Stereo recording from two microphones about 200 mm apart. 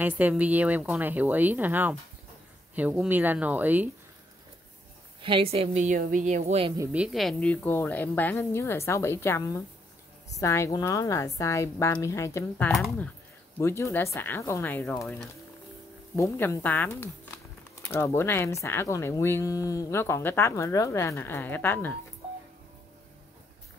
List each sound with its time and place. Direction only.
0.0 s speech: 10° right (ahead or behind)
5.2 s a woman's voice: 25° right (ahead or behind)
6.8 s speech: 5° right (ahead or behind); by 21.9 s 10° left (ahead or behind)